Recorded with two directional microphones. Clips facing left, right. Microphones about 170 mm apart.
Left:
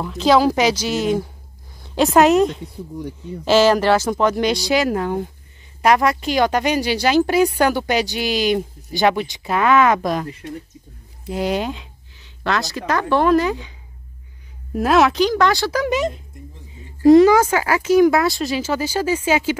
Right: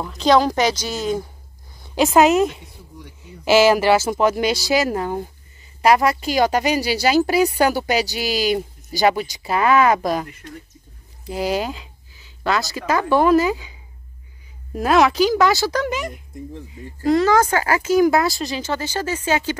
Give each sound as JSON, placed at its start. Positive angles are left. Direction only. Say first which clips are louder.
{"t": 0.0, "sound": "a woman's voice", "louder": "left 1 dB", "side_deg": 5}
{"t": 11.2, "sound": "a woman's voice", "louder": "left 1 dB", "side_deg": 0}
{"t": 15.9, "sound": "speech", "louder": "left 6 dB", "side_deg": 20}